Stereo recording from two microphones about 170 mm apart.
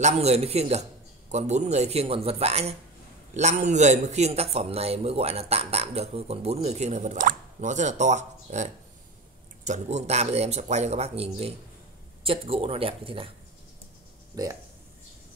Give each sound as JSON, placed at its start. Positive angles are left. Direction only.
{"t": 0.0, "sound": "a man's voice", "side_deg": -40}
{"t": 14.3, "sound": "speech", "side_deg": -20}